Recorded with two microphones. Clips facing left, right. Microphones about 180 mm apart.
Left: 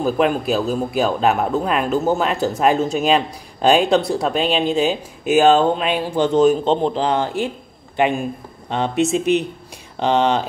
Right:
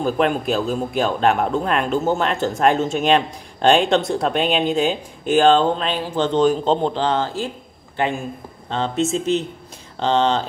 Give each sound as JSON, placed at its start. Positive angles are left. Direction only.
{"t": 0.0, "sound": "speech", "side_deg": 5}